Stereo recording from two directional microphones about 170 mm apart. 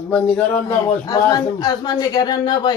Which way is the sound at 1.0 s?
20° left (ahead or behind).